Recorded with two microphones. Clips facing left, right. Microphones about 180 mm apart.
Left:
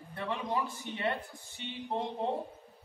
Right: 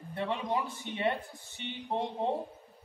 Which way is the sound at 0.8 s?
20° right (ahead or behind).